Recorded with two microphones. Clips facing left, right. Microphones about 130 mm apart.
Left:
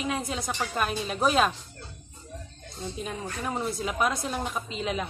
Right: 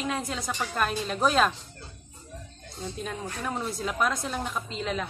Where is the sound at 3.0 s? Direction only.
5° left (ahead or behind).